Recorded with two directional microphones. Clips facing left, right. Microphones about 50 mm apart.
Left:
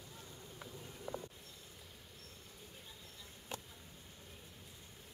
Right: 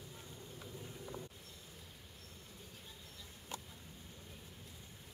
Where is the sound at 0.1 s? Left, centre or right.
Centre.